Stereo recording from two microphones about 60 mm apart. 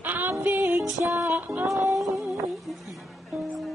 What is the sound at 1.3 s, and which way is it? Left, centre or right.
Music, right.